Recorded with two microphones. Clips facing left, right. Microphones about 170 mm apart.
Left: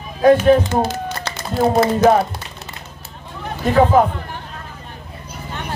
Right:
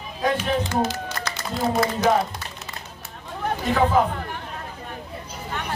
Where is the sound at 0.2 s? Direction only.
50° left (ahead or behind).